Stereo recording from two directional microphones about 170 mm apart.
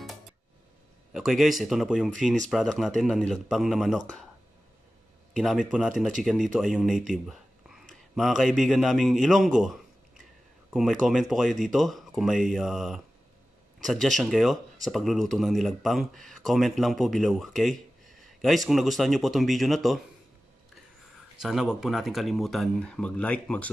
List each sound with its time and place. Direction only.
1.1 s speech: centre (ahead or behind)
5.3 s speech: centre (ahead or behind)
21.4 s speech: centre (ahead or behind)